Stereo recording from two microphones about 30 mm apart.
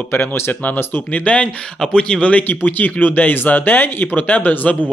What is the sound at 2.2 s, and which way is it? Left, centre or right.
Speech, left.